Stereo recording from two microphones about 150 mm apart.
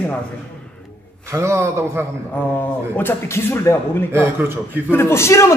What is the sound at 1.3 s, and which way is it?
Speech, 20° right (ahead or behind).